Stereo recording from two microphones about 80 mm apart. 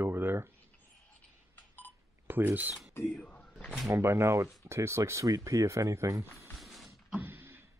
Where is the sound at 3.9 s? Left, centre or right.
Right.